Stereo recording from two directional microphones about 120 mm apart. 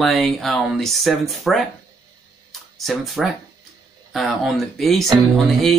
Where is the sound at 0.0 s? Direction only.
Centre (ahead or behind).